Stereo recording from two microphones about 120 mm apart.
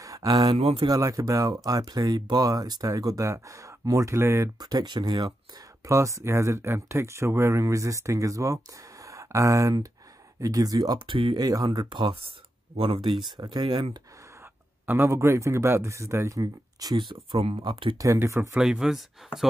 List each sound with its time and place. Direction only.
0.0 s a sound: 30° right (ahead or behind)
0.6 s speech: 55° right (ahead or behind)
0.8 s speech: 30° right (ahead or behind)
4.6 s speech: 35° right (ahead or behind)
5.9 s speech: 25° right (ahead or behind)
9.0 s a sound: 25° right (ahead or behind)
10.4 s speech: 30° right (ahead or behind)
13.4 s speech: 35° right (ahead or behind)
14.9 s speech: 20° right (ahead or behind); by 17.9 s 45° right (ahead or behind)
17.9 s speech: 25° right (ahead or behind)
18.5 s speech: 5° right (ahead or behind)